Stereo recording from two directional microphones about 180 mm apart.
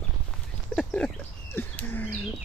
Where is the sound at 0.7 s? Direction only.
5° left (ahead or behind).